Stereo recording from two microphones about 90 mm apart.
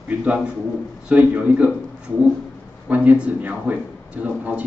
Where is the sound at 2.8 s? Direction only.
15° right (ahead or behind).